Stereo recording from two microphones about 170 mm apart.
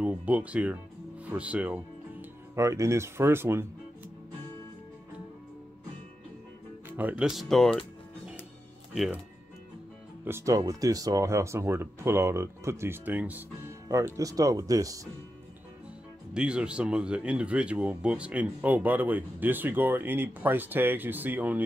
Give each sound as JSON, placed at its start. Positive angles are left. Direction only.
{"t": 0.0, "sound": "speech", "side_deg": -10}
{"t": 2.5, "sound": "speech", "side_deg": -20}
{"t": 6.9, "sound": "speech", "side_deg": -10}
{"t": 8.9, "sound": "speech", "side_deg": 0}
{"t": 10.2, "sound": "speech", "side_deg": -15}
{"t": 16.3, "sound": "speech", "side_deg": -5}